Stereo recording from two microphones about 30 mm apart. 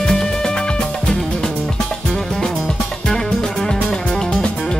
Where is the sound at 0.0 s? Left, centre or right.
Left.